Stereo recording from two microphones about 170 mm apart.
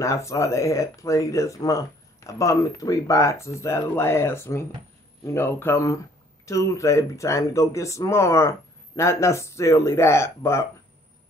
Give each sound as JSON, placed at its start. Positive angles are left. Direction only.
{"t": 0.0, "sound": "speech", "side_deg": 15}